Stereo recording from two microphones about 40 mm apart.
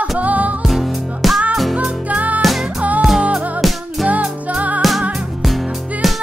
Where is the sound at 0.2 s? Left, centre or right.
Right.